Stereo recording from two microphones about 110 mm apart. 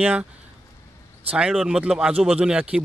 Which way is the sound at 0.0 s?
10° right (ahead or behind).